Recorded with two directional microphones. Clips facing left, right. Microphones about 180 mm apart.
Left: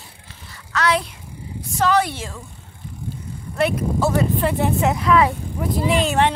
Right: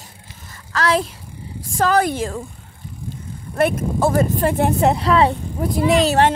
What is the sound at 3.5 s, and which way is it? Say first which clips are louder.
Speech: right 2 dB; 50° right (ahead or behind).